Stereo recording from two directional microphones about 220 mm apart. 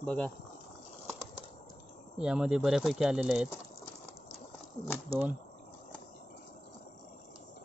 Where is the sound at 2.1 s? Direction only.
5° right (ahead or behind).